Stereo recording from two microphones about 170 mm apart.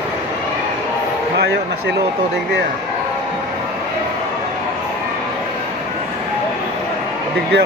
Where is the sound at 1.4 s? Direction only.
80° right.